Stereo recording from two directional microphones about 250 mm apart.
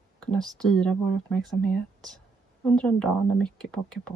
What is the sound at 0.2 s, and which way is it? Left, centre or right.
Speech, centre.